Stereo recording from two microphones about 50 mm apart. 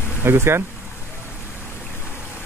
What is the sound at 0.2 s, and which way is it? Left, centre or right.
Speech, right.